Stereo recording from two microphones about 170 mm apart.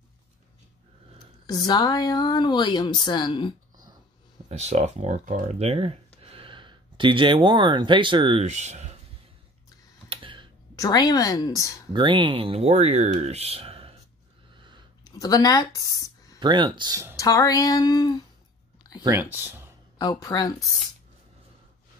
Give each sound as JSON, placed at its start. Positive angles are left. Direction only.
{"t": 1.5, "sound": "speech", "side_deg": 25}
{"t": 4.5, "sound": "speech", "side_deg": -40}
{"t": 10.0, "sound": "computer keyboard", "side_deg": -30}
{"t": 10.8, "sound": "speech", "side_deg": 20}
{"t": 11.9, "sound": "speech", "side_deg": -30}
{"t": 14.6, "sound": "a sound", "side_deg": -25}
{"t": 15.0, "sound": "speech", "side_deg": 20}
{"t": 15.9, "sound": "a sound", "side_deg": 20}
{"t": 16.3, "sound": "speech", "side_deg": -25}
{"t": 17.2, "sound": "speech", "side_deg": 20}
{"t": 19.0, "sound": "speech", "side_deg": -15}
{"t": 20.0, "sound": "speech", "side_deg": 20}